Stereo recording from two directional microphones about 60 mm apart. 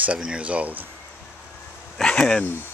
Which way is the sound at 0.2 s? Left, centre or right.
Centre.